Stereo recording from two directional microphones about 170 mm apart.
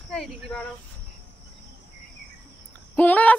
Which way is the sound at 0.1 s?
5° left (ahead or behind).